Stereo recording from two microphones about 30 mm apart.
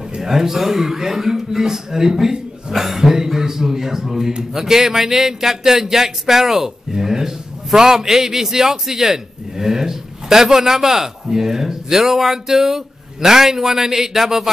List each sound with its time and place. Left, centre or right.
0.2 s speech: centre